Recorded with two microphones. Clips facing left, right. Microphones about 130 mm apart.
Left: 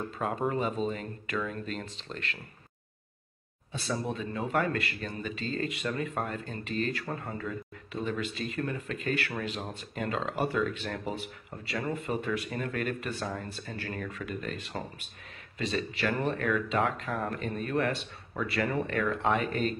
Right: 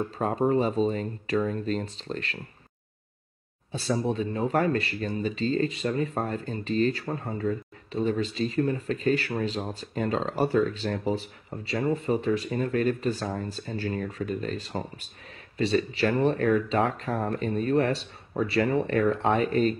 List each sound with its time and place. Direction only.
0.2 s speech: 35° right (ahead or behind)
3.7 s speech: 35° right (ahead or behind)